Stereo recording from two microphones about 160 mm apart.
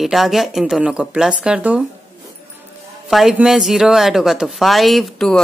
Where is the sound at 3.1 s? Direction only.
Centre (ahead or behind).